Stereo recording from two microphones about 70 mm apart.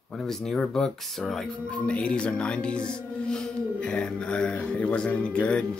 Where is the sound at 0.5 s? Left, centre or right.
Centre.